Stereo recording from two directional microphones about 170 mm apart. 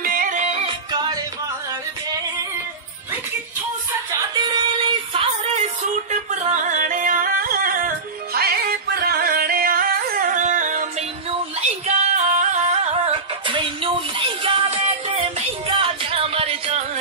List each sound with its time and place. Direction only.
0.0 s music: 55° right (ahead or behind)
0.9 s music: 25° right (ahead or behind)
4.1 s a sound: 25° right (ahead or behind)
6.4 s music: 45° right (ahead or behind)
12.1 s music: 45° right (ahead or behind)